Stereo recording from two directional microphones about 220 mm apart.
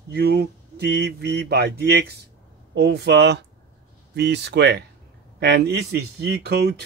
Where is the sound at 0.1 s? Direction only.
45° right (ahead or behind).